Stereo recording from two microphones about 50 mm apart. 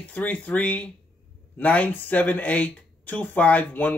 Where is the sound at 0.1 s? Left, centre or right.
Left.